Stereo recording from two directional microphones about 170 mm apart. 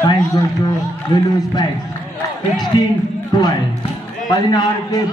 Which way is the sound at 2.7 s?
25° left (ahead or behind).